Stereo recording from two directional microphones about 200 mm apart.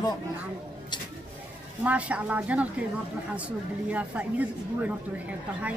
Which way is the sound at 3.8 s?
5° right (ahead or behind).